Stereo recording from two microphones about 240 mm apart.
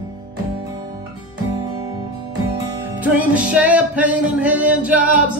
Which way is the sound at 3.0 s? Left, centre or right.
Centre.